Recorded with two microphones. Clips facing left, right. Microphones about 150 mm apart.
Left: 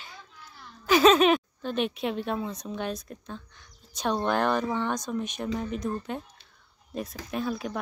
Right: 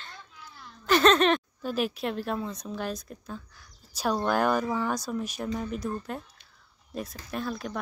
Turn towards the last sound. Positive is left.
turn(degrees=0)  # may be behind; listen again after turning